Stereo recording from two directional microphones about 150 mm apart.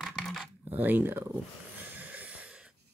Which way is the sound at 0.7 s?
10° right (ahead or behind).